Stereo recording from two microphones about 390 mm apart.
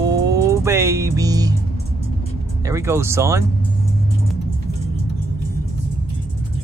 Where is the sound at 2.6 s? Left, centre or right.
Centre.